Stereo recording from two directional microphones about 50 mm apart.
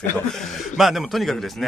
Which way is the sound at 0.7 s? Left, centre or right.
Centre.